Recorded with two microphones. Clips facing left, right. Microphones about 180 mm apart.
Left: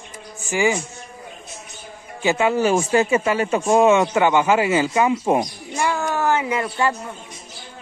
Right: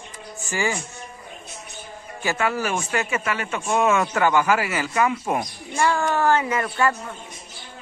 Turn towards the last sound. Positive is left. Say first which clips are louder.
# left 1 dB
turn(degrees=15)  # may be behind; listen again after turning